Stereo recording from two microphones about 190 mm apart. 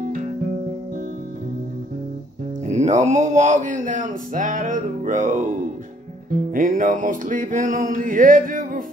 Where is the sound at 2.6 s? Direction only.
40° right (ahead or behind).